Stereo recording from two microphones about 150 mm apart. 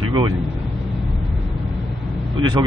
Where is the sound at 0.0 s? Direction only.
35° right (ahead or behind).